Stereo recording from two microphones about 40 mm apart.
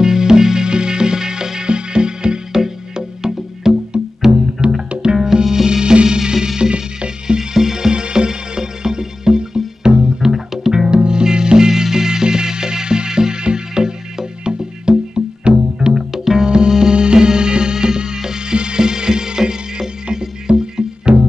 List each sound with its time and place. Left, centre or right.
0.0 s music: centre
4.6 s music: right
5.1 s music: centre
10.9 s music: centre
15.9 s music: centre